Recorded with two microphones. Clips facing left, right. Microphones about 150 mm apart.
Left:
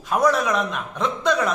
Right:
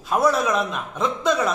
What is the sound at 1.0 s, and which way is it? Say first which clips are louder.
Speech: even; 10° right (ahead or behind).